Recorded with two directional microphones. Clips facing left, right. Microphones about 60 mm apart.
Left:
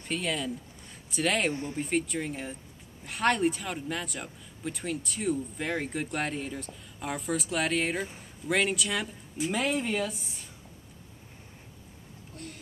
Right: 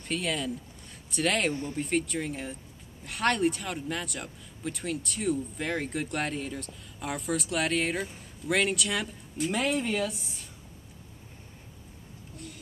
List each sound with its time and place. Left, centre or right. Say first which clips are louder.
0.0 s speech: even; centre
1.5 s speech: right 1 dB; left
1.8 s speech: even; centre